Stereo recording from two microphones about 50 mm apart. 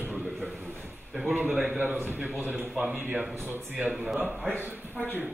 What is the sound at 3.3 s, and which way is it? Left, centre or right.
Speech, right.